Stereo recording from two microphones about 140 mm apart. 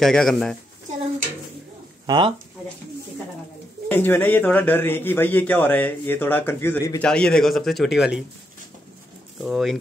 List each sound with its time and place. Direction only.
0.0 s a man's voice: 5° left (ahead or behind)
2.0 s speech: 35° right (ahead or behind)
3.9 s a man's voice: 15° left (ahead or behind)
7.0 s a man's voice: 5° left (ahead or behind)
9.4 s a man's voice: 5° right (ahead or behind)